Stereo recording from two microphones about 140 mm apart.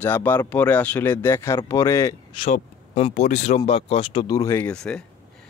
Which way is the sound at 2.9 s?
45° left (ahead or behind).